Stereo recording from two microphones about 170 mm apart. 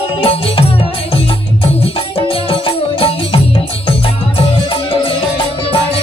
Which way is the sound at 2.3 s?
30° left (ahead or behind).